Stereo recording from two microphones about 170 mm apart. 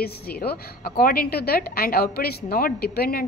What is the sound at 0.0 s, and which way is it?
A woman's voice, 65° left (ahead or behind).